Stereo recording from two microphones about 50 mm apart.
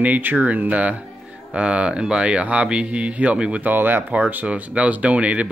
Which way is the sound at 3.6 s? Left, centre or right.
Right.